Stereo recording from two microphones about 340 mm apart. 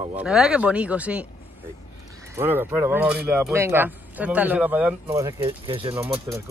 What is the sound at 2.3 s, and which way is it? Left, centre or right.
Speech, centre.